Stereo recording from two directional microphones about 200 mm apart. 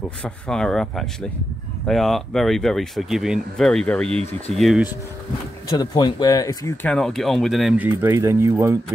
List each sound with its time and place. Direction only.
0.2 s speech: 5° left (ahead or behind)
5.7 s speech: 20° left (ahead or behind)
6.9 s speech: 5° left (ahead or behind); by 8.7 s 15° right (ahead or behind)